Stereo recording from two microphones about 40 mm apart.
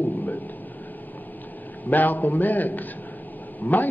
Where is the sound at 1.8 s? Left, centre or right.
Left.